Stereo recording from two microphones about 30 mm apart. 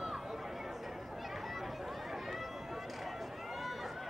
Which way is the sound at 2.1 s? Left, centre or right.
Centre.